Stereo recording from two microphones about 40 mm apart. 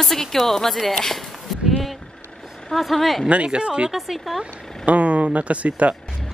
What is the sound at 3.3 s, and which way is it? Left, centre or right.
Speech, right.